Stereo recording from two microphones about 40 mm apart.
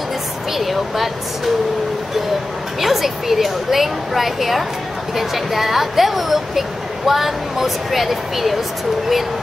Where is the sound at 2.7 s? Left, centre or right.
Centre.